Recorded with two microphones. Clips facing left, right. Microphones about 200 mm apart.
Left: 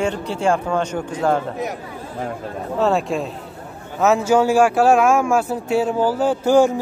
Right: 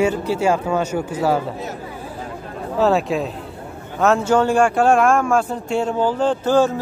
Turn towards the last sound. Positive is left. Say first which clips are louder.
# left 2 dB
turn(degrees=15)  # may be behind; listen again after turning